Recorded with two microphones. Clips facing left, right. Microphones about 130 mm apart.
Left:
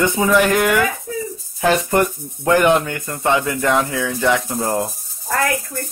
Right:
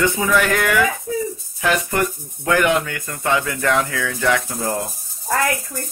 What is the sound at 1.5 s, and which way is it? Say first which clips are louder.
Speech: left 4 dB; 30° left (ahead or behind).